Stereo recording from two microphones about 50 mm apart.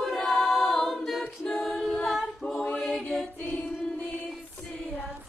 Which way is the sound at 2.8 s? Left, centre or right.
Centre.